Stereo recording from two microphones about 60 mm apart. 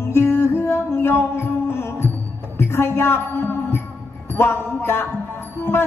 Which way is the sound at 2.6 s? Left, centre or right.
Left.